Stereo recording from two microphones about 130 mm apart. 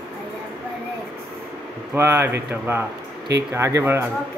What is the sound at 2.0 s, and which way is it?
Speech, 20° right (ahead or behind).